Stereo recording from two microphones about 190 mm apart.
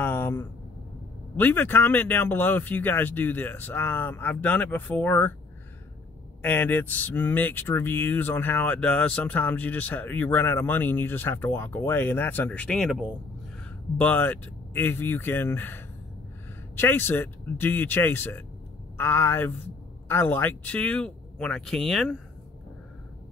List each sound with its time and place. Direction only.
0.0 s a sound: 10° left (ahead or behind)
1.3 s speech: 10° left (ahead or behind)
6.4 s speech: 10° left (ahead or behind)